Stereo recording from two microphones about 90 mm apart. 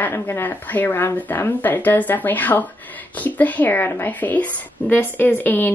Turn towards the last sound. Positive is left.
turn(degrees=20)  # may be behind; listen again after turning